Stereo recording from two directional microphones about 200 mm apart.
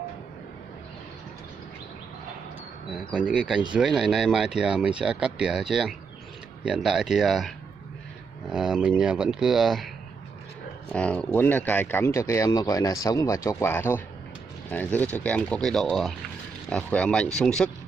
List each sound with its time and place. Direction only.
2.9 s speech: 5° right (ahead or behind)
10.9 s speech: 5° left (ahead or behind)